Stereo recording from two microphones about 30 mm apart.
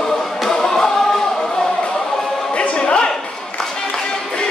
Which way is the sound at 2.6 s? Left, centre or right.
Left.